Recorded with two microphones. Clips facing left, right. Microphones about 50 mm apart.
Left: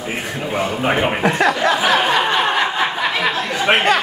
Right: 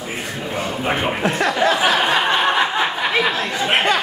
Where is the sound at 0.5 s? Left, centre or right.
Centre.